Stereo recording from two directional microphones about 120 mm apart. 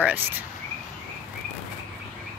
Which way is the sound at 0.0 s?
15° right (ahead or behind).